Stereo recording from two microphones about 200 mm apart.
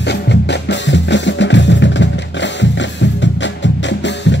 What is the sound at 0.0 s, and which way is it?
Drum, 60° left (ahead or behind).